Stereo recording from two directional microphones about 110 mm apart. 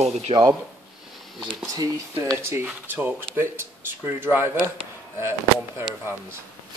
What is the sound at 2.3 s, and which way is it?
Speech, 20° right (ahead or behind).